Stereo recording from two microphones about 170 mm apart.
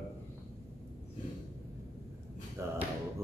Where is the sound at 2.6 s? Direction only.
15° right (ahead or behind).